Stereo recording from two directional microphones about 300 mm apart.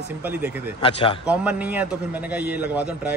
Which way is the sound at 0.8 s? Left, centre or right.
Centre.